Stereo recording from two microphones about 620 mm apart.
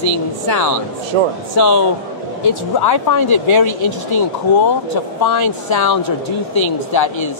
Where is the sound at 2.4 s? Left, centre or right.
Left.